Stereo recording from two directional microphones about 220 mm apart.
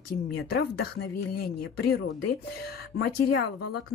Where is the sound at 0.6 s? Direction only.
45° left (ahead or behind).